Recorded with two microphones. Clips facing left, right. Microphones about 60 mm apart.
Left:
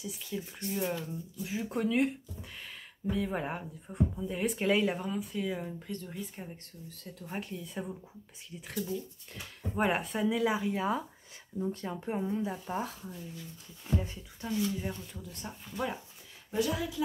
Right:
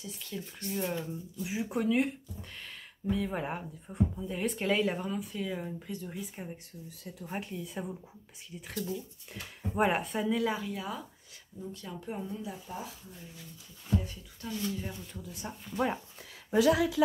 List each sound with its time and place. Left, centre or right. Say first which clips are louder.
0.0 s speech: left 2 dB; centre
0.9 s speech: right 1 dB; centre
10.7 s speech: left 6 dB; left
12.6 s speech: left 6 dB; left
14.0 s speech: left 2 dB; left
14.6 s speech: left 3 dB; centre
16.4 s speech: right 7 dB; right